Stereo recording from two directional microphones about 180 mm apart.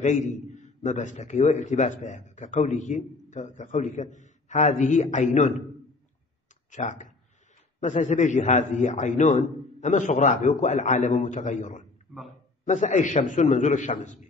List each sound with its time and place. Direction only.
0.0 s a man's voice: 40° left (ahead or behind)
6.7 s a man's voice: 45° left (ahead or behind)
12.1 s a man's voice: centre (ahead or behind)
12.6 s a man's voice: 40° left (ahead or behind)